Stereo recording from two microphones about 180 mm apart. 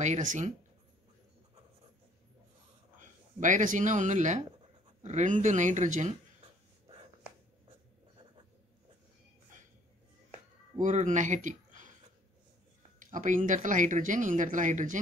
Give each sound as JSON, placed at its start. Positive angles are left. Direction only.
{"t": 0.0, "sound": "speech", "side_deg": -45}
{"t": 3.0, "sound": "speech", "side_deg": -45}
{"t": 10.8, "sound": "speech", "side_deg": -45}
{"t": 13.1, "sound": "speech", "side_deg": -45}